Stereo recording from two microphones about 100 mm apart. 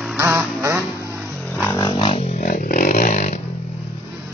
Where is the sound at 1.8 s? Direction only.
50° left (ahead or behind).